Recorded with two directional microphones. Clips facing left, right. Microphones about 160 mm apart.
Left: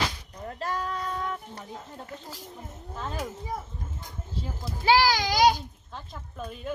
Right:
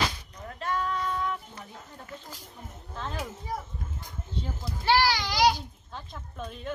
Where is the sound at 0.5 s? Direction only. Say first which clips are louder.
Right 1 dB; 35° left (ahead or behind).